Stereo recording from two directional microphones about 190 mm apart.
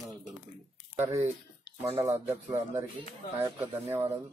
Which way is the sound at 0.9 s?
15° right (ahead or behind).